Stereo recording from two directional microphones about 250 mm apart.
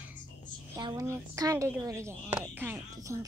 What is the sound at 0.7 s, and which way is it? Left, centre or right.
Speech, centre.